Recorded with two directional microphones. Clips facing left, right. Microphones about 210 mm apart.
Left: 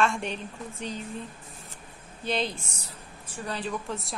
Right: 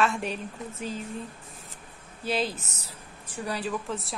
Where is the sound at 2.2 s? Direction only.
5° right (ahead or behind).